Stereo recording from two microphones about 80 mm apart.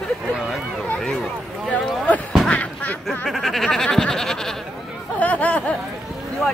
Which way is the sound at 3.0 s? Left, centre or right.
Centre.